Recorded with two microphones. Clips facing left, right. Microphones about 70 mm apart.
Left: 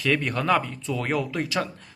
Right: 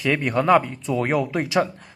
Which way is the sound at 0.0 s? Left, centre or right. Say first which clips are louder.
Right 4 dB; centre.